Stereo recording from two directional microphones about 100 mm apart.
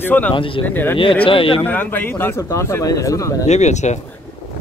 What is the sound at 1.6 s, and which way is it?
A man's voice, 20° left (ahead or behind).